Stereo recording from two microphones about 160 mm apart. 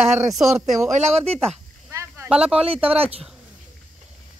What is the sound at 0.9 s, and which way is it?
Speech, 45° right (ahead or behind).